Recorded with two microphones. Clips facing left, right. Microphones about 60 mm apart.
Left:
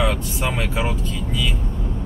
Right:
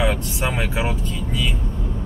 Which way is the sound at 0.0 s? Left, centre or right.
Centre.